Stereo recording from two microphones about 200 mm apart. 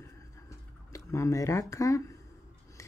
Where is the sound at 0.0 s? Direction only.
15° left (ahead or behind).